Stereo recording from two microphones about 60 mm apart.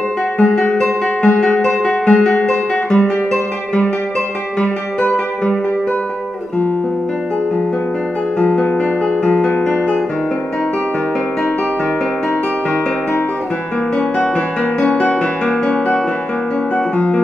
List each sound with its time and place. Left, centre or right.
0.4 s music: centre
5.0 s music: centre
9.2 s music: centre
14.9 s music: centre
16.7 s music: left